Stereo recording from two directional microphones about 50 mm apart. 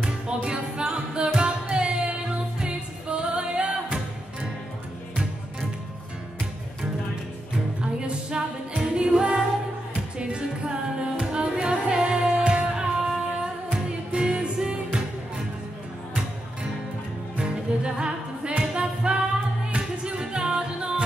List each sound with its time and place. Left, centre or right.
0.5 s music: centre
7.8 s music: centre
14.1 s music: centre
17.4 s music: centre